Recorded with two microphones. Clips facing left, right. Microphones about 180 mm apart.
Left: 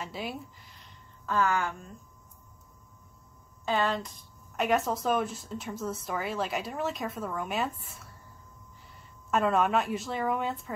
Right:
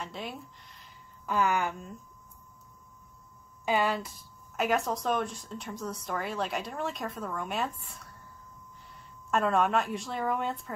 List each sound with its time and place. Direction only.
0.0 s a sound: 5° left (ahead or behind)
1.2 s speech: 15° right (ahead or behind)
3.6 s speech: 10° right (ahead or behind)
9.3 s speech: centre (ahead or behind)